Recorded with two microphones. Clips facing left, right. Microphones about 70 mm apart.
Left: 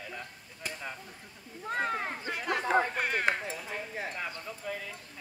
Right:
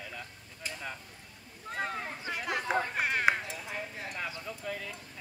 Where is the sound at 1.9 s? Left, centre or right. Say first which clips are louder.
Left 4 dB; left.